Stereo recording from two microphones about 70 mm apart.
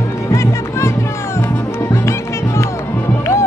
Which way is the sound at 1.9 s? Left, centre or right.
Left.